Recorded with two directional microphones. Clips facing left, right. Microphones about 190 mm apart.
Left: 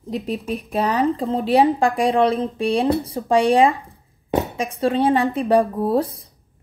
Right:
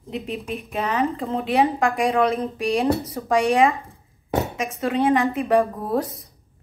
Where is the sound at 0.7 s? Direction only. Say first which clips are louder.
Left 4 dB; 35° left (ahead or behind).